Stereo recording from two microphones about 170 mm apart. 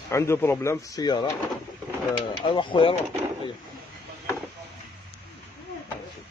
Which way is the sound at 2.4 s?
30° left (ahead or behind).